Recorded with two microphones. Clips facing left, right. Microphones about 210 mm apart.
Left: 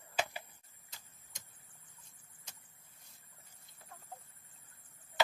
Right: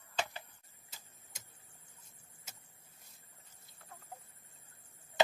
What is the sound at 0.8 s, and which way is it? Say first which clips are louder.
Tick-tock: right 1 dB; 5° right (ahead or behind).